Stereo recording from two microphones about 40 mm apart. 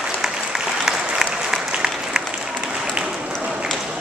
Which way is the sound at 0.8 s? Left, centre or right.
Centre.